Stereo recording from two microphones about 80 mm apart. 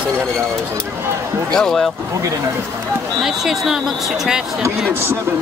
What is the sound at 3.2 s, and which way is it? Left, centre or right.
Speech, centre.